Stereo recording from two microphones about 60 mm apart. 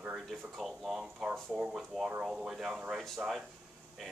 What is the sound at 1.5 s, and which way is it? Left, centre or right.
Speech, centre.